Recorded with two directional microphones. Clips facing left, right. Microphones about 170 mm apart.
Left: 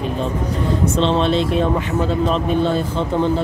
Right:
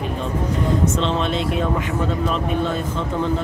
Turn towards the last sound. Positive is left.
turn(degrees=30)  # may be behind; listen again after turning